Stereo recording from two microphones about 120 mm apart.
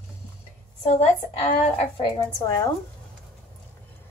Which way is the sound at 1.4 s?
60° left (ahead or behind).